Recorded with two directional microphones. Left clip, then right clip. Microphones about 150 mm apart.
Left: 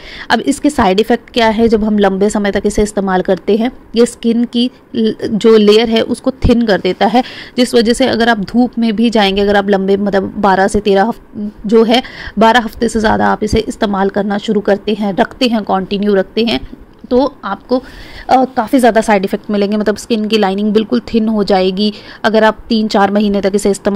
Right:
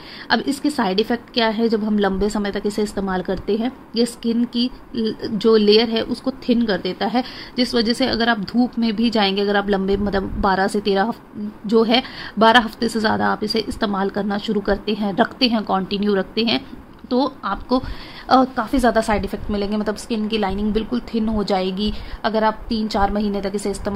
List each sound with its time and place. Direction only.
0.3 s a woman's voice: 35° left (ahead or behind)